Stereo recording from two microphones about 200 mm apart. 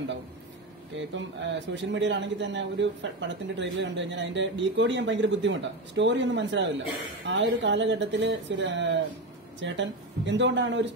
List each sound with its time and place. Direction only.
0.9 s speech: 65° right (ahead or behind)